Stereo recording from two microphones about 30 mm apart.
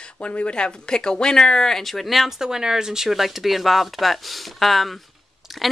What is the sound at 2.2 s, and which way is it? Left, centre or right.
Speech, centre.